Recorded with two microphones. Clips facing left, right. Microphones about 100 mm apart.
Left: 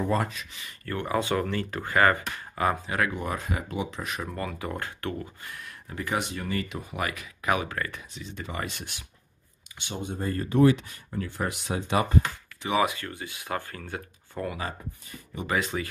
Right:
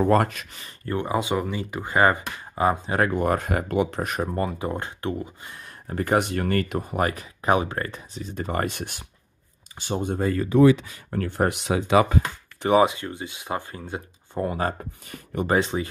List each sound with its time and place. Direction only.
0.0 s speech: 60° right (ahead or behind)
0.8 s speech: 20° right (ahead or behind)
3.0 s speech: 50° right (ahead or behind)
4.3 s speech: 25° right (ahead or behind); by 10.1 s 45° right (ahead or behind)
11.1 s speech: 55° right (ahead or behind)
11.6 s speech: 90° right
12.8 s speech: 25° right (ahead or behind)
14.6 s speech: 45° right (ahead or behind)
15.0 s speech: 65° right (ahead or behind)
15.4 s speech: 35° right (ahead or behind)